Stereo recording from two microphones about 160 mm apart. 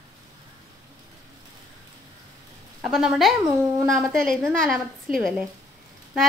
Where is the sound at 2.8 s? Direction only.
Centre (ahead or behind).